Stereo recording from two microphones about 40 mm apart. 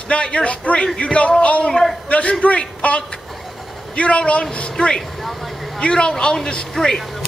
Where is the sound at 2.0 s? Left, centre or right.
Left; by 7.0 s centre.